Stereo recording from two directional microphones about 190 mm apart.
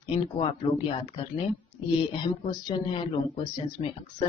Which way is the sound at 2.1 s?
30° left (ahead or behind).